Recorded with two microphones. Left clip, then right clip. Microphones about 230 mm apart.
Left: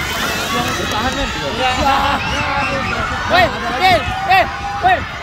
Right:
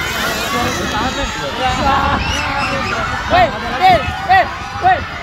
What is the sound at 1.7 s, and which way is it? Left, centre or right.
Speech, left.